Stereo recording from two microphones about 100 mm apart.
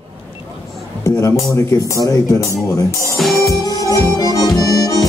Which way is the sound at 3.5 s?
35° left (ahead or behind).